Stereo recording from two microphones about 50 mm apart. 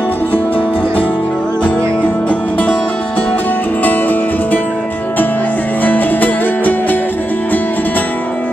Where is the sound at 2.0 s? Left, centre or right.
Left.